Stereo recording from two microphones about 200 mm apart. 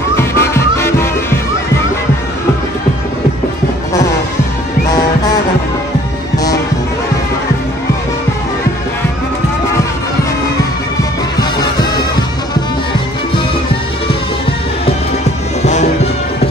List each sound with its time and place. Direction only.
0.1 s music: 15° left (ahead or behind)
15.6 s music: 35° left (ahead or behind)